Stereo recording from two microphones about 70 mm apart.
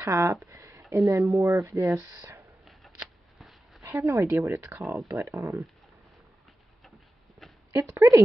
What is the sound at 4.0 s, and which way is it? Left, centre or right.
Speech, right.